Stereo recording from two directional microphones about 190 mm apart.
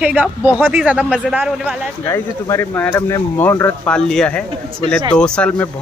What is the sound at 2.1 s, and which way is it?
A man's voice, 15° left (ahead or behind).